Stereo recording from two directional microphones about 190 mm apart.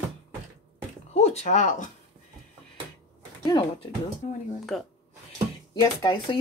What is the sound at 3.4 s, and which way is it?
Speech, 25° left (ahead or behind).